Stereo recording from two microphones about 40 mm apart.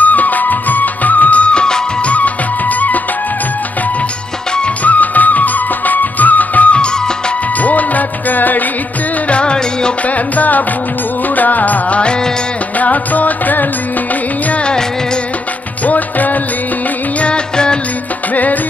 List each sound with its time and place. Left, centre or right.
0.0 s music of bollywood: left
4.8 s music: left
9.3 s music: left
10.0 s music: left
14.5 s music: left
15.8 s music: left
17.2 s music: left
18.3 s music: left